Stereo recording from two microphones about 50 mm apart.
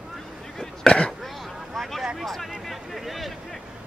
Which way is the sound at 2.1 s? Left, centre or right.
Centre.